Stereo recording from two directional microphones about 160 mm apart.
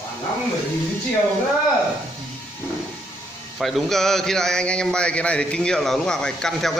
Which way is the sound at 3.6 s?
Centre (ahead or behind).